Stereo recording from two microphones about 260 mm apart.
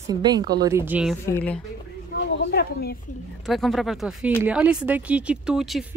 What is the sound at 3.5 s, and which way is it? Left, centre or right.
Speech, centre.